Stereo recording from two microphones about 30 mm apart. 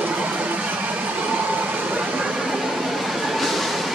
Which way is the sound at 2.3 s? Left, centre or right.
Centre.